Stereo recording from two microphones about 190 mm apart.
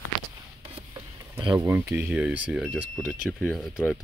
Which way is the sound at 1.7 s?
15° right (ahead or behind).